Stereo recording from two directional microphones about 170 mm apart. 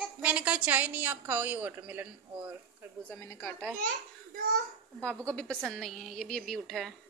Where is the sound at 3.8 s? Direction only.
55° right (ahead or behind).